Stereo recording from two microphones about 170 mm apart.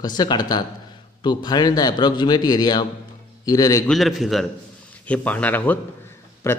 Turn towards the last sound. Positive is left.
turn(degrees=15)  # may be behind; listen again after turning